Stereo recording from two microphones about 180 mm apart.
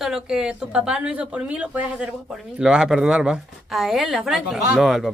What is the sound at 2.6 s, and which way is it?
A man's voice, 5° right (ahead or behind).